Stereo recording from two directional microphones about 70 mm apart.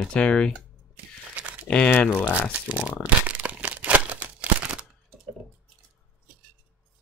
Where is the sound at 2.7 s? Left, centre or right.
Right.